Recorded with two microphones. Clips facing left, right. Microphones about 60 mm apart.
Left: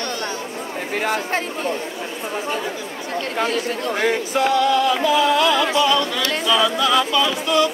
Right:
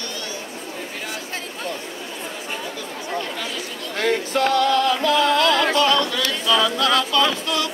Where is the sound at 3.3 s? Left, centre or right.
Left.